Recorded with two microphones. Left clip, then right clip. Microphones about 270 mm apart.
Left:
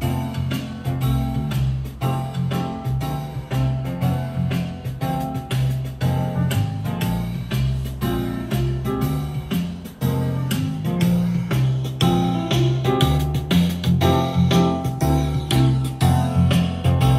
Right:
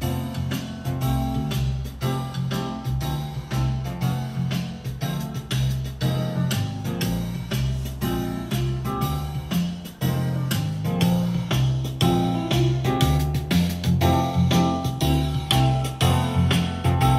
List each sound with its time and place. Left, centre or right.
11.5 s music: centre
15.0 s music: right
16.0 s music: centre